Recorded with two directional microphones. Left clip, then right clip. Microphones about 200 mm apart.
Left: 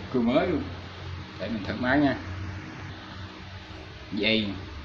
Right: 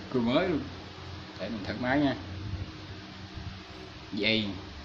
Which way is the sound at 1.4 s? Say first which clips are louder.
Left 3 dB; 10° right (ahead or behind).